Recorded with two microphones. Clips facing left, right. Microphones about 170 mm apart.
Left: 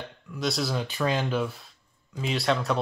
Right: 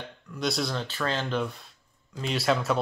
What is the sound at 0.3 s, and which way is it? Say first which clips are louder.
Speech: left 1 dB; centre (ahead or behind).